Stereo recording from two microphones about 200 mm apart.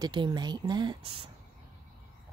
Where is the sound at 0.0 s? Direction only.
20° right (ahead or behind).